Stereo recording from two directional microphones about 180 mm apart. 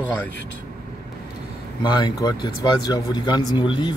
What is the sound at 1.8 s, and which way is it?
Speech, 25° left (ahead or behind).